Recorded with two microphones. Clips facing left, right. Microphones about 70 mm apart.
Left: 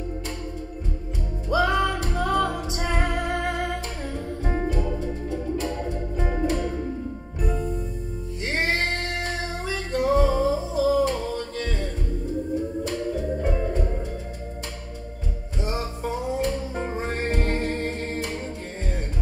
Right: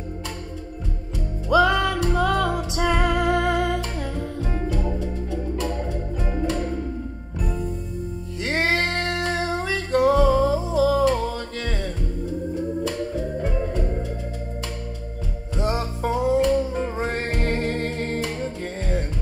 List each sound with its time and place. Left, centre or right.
1.5 s music: right
8.4 s music: right
15.5 s music: right